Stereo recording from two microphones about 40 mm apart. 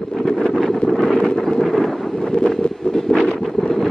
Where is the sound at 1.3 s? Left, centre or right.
Centre.